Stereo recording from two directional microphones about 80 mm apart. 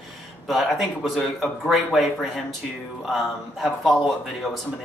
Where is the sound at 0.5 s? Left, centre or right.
Centre.